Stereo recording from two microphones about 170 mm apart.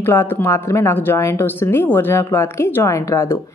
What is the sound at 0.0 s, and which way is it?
A woman's voice, 15° left (ahead or behind).